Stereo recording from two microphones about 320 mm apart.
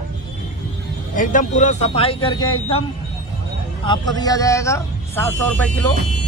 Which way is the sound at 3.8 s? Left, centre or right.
Centre.